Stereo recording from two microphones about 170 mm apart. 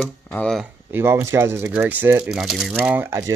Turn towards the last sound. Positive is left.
turn(degrees=-15)  # may be behind; listen again after turning